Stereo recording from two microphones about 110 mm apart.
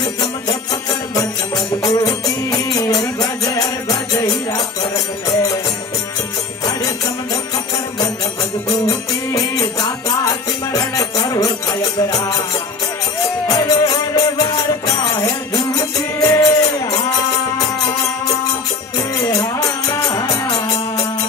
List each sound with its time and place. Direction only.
0.0 s music: 30° left (ahead or behind)
1.8 s music: 35° left (ahead or behind)
8.6 s music: 35° left (ahead or behind)
13.5 s music: 35° left (ahead or behind)
19.2 s music: 35° left (ahead or behind)